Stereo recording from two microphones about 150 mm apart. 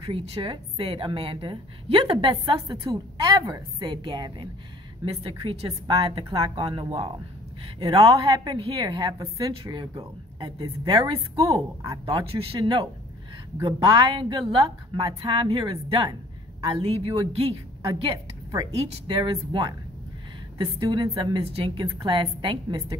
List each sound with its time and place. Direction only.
0.0 s a woman's voice: 35° right (ahead or behind)